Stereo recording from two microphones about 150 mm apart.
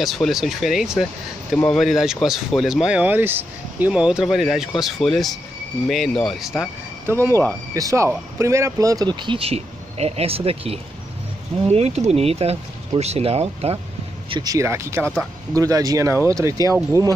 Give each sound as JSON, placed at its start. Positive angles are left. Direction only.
{"t": 0.0, "sound": "speech", "side_deg": 0}
{"t": 7.1, "sound": "speech", "side_deg": -15}
{"t": 14.3, "sound": "speech", "side_deg": -25}